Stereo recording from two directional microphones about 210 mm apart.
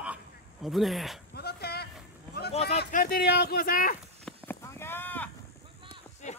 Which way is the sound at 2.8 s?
45° left (ahead or behind).